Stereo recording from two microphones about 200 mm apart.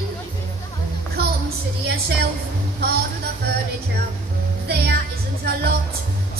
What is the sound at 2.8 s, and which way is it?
Speech, 50° right (ahead or behind).